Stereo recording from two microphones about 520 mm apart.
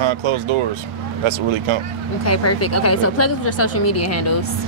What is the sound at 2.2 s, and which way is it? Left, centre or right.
A woman's voice, left.